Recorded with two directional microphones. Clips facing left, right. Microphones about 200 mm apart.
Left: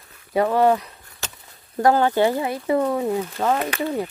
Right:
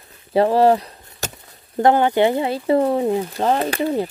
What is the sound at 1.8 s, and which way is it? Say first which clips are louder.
Speech: right 2 dB; 20° right (ahead or behind).